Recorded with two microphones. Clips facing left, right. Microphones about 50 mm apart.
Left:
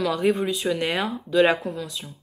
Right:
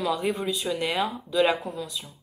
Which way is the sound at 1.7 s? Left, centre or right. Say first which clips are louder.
Left 2 dB; left.